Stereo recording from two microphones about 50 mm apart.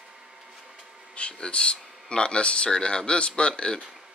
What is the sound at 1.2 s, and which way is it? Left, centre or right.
Speech, left.